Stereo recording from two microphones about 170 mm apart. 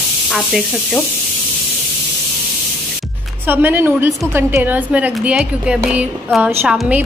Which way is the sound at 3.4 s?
10° right (ahead or behind).